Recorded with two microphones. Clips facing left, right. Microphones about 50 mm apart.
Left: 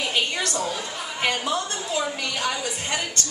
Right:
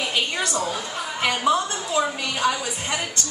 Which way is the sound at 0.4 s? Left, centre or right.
Right.